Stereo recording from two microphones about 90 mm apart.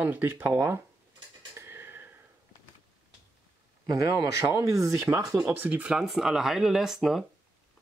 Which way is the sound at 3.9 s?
35° right (ahead or behind).